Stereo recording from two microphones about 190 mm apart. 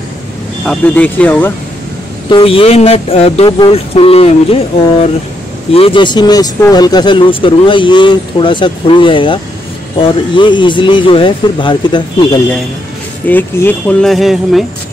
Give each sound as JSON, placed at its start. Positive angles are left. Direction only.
{"t": 0.7, "sound": "speech", "side_deg": 10}
{"t": 2.2, "sound": "speech", "side_deg": 25}
{"t": 13.3, "sound": "speech", "side_deg": 10}